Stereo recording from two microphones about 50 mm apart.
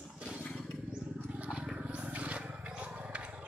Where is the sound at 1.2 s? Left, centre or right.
Right.